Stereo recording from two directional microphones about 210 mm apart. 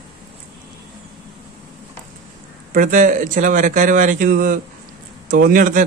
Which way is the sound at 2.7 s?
40° right (ahead or behind).